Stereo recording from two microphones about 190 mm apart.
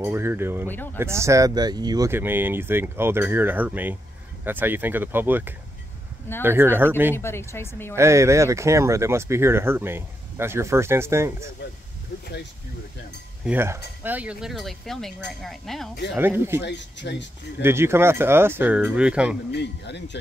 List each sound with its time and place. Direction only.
0.0 s speech: 10° right (ahead or behind)
7.2 s speech: 15° left (ahead or behind)
7.9 s speech: 15° right (ahead or behind)
13.5 s speech: 10° right (ahead or behind)
16.2 s speech: 10° right (ahead or behind)
16.6 s speech: 65° left (ahead or behind)
17.6 s speech: 10° right (ahead or behind)
19.5 s speech: 65° left (ahead or behind)